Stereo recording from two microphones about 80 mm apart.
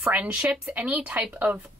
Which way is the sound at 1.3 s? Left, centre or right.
Right.